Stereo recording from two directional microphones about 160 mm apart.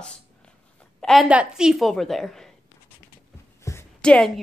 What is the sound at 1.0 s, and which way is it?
Speech, centre (ahead or behind).